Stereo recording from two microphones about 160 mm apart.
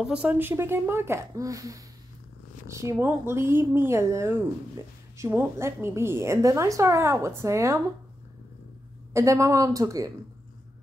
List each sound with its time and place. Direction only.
0.0 s a woman's voice: 5° right (ahead or behind)
9.1 s speech: 20° right (ahead or behind)